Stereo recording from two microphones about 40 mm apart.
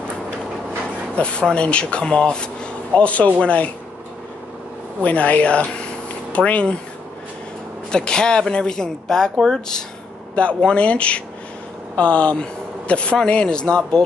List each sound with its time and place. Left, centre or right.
1.5 s speech: left
5.0 s speech: left
7.9 s speech: left
10.3 s speech: left